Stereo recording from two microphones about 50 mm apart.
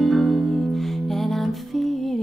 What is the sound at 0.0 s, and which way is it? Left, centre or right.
Music, centre.